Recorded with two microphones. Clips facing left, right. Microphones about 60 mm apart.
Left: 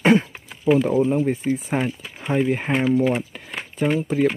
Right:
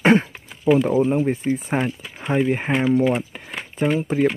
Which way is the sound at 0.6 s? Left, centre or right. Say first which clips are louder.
Right 1 dB; centre.